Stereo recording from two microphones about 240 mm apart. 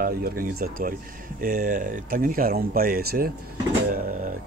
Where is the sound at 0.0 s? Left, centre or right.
Right.